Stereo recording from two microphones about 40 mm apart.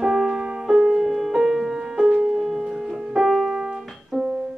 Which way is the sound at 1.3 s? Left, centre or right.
Centre.